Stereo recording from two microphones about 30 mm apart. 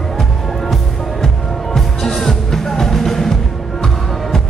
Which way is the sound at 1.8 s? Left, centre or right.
Centre.